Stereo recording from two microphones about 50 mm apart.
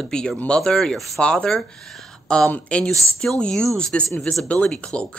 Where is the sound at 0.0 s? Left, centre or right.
Centre.